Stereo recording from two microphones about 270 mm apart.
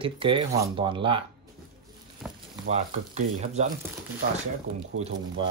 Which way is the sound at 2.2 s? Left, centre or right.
Centre.